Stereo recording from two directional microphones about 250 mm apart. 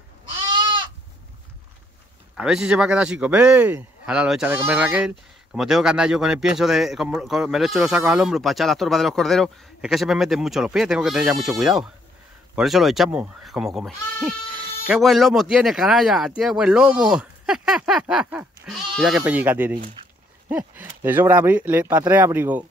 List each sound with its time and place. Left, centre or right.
0.5 s goat: centre
2.3 s speech: centre